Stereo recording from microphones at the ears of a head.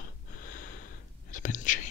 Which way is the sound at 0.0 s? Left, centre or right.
Left.